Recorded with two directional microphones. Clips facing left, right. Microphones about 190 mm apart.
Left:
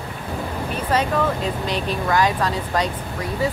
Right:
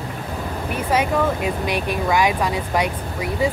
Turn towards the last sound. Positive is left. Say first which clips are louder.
# right 2 dB
turn(degrees=-10)  # may be behind; listen again after turning